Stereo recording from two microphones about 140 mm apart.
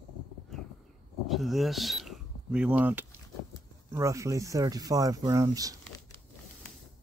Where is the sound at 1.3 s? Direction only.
Centre (ahead or behind); by 5.7 s 25° right (ahead or behind).